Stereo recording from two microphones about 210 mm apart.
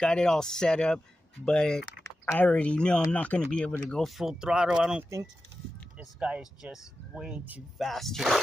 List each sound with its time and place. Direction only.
0.0 s speech: 5° left (ahead or behind)